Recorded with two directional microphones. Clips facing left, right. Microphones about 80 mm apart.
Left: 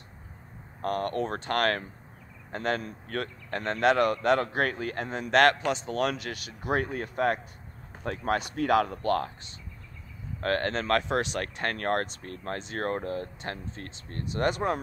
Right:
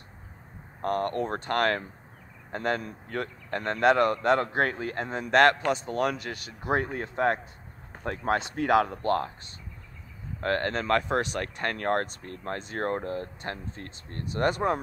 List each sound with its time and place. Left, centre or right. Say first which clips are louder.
0.8 s speech: right 1 dB; right
10.4 s speech: even; right